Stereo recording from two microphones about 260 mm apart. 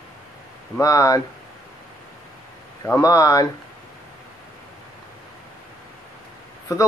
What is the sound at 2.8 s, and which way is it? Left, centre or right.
Speech, centre.